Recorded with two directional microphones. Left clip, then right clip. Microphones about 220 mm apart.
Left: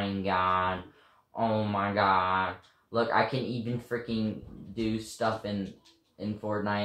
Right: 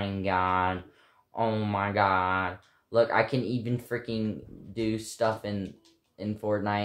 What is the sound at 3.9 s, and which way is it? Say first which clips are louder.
Speech: even; 50° right (ahead or behind).